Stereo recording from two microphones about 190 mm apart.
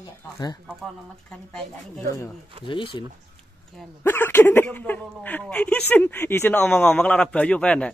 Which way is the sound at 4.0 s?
10° left (ahead or behind).